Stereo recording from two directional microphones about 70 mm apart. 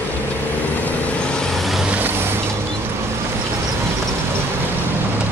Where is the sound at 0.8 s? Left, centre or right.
Centre.